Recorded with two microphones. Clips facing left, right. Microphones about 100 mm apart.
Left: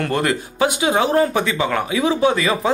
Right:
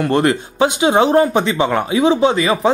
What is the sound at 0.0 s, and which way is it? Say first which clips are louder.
Speech: right 5 dB; 25° right (ahead or behind).